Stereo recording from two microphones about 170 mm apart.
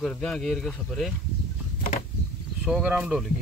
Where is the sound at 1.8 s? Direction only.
50° left (ahead or behind).